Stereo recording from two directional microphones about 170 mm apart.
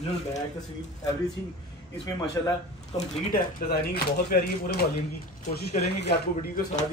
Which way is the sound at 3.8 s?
70° left (ahead or behind).